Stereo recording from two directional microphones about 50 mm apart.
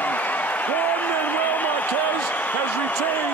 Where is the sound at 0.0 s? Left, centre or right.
Left.